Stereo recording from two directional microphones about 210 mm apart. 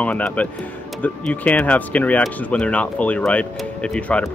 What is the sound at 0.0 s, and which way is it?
A man's voice, 5° left (ahead or behind).